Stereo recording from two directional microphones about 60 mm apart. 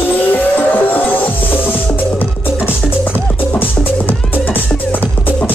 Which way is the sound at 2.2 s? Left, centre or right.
Left.